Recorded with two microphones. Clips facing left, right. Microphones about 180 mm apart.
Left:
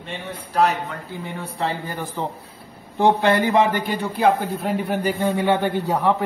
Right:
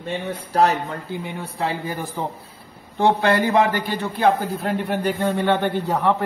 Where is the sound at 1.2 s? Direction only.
10° right (ahead or behind).